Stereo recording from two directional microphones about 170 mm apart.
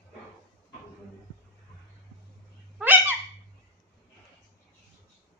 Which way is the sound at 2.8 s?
10° right (ahead or behind).